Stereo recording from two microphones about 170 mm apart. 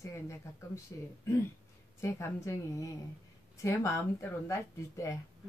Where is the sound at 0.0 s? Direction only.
15° left (ahead or behind).